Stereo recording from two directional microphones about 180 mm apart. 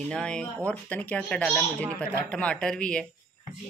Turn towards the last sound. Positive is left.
turn(degrees=5)  # may be behind; listen again after turning